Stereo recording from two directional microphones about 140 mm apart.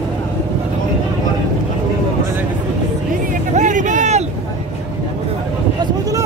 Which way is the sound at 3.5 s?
60° right (ahead or behind).